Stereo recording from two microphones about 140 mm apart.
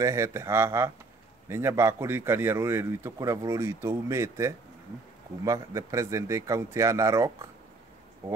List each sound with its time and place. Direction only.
0.0 s speech: 20° right (ahead or behind)